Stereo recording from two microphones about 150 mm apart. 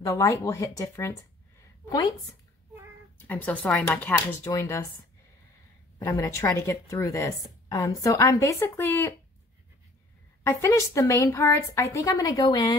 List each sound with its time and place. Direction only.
0.0 s a woman's voice: 20° left (ahead or behind)
3.3 s a woman's voice: 10° left (ahead or behind)
5.9 s a woman's voice: 20° left (ahead or behind)
10.4 s a woman's voice: 20° left (ahead or behind)